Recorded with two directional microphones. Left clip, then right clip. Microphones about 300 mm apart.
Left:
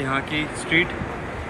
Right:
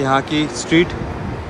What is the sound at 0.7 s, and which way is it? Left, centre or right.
Speech, right.